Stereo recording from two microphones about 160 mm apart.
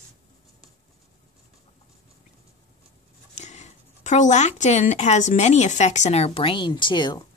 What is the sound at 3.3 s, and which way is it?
Speech, 45° left (ahead or behind).